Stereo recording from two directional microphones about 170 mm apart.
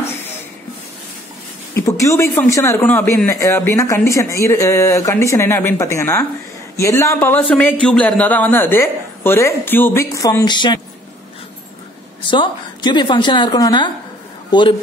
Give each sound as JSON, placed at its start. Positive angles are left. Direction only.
{"t": 1.9, "sound": "a man's voice", "side_deg": 15}
{"t": 12.3, "sound": "a woman's voice", "side_deg": 25}